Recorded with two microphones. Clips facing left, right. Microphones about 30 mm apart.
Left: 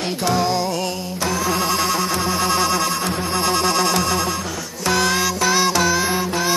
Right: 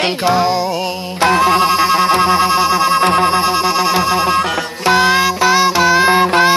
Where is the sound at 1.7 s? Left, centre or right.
Right.